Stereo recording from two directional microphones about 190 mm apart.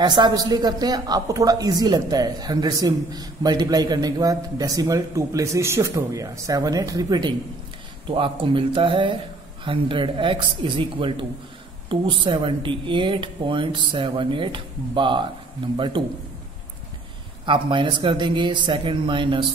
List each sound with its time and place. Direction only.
0.0 s a woman's voice: 20° right (ahead or behind)
17.5 s a woman's voice: 25° right (ahead or behind)